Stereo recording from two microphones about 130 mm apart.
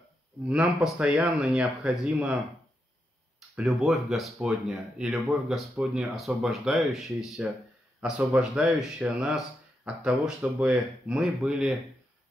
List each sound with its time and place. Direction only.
0.5 s speech: 10° right (ahead or behind)
3.5 s speech: centre (ahead or behind)